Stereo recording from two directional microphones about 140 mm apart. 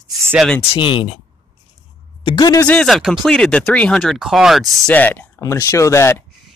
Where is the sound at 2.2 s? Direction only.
30° left (ahead or behind).